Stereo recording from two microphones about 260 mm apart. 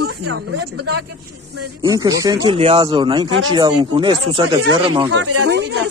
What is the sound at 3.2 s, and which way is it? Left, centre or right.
Speech, right.